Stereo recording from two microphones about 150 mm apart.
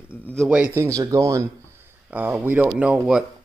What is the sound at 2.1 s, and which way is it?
Speech, 10° right (ahead or behind).